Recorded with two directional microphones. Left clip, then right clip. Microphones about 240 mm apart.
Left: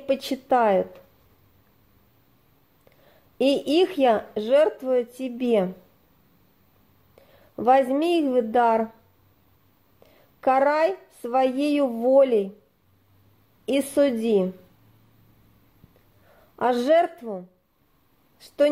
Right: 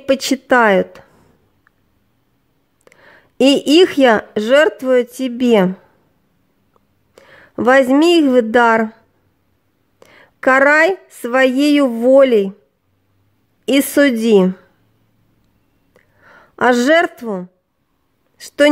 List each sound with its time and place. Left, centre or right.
0.0 s speech: right
3.4 s speech: right
7.5 s speech: right
10.4 s speech: right
13.7 s speech: right
16.5 s speech: right